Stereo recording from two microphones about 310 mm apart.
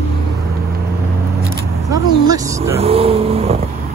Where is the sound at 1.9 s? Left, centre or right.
Centre.